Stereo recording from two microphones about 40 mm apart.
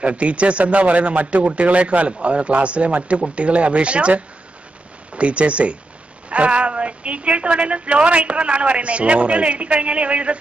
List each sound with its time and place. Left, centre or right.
0.0 s speech: right